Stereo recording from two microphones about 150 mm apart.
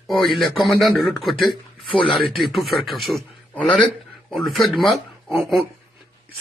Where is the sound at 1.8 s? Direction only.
35° left (ahead or behind).